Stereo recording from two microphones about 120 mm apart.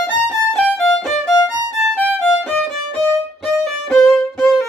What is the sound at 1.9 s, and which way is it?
Music, 15° left (ahead or behind).